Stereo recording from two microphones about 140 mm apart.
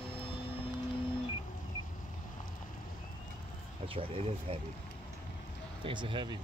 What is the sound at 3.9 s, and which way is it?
Speech, 40° right (ahead or behind).